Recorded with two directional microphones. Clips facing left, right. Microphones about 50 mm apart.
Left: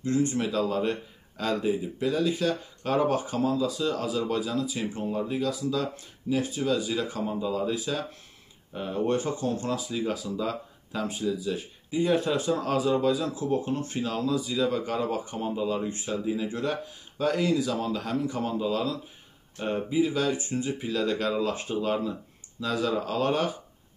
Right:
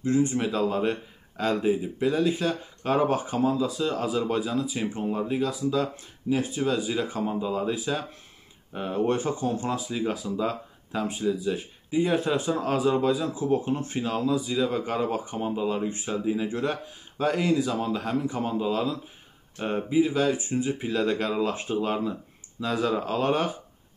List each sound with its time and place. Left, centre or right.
0.0 s speech: centre